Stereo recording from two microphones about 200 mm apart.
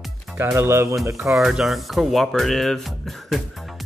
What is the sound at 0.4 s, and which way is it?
Speech, 10° right (ahead or behind).